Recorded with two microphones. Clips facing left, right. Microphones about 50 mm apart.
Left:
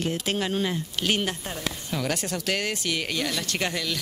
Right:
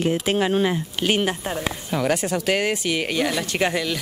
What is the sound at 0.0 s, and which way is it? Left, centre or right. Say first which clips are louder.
Speech: right 6 dB; centre.